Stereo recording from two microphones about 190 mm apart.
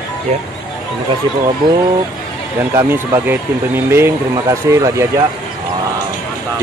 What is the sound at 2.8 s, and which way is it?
Speech, 10° right (ahead or behind).